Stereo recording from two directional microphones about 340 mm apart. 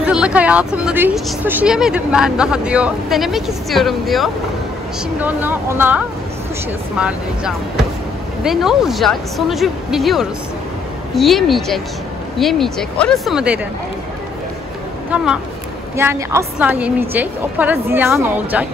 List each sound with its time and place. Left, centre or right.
0.0 s a woman's voice: centre
16.0 s a woman's voice: centre